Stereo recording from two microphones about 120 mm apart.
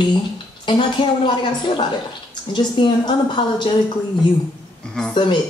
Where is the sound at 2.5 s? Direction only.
40° left (ahead or behind).